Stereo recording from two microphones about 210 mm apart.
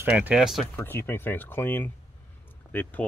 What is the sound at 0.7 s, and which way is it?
Speech, 10° left (ahead or behind).